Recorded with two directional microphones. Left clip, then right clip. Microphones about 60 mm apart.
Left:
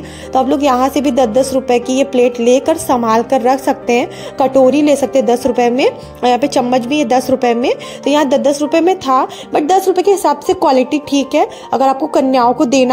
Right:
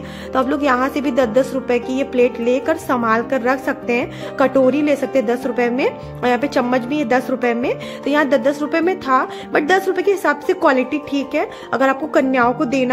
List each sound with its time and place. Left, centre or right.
0.3 s a woman's voice: centre
0.7 s a woman's voice: left
6.2 s a woman's voice: left
8.0 s a woman's voice: left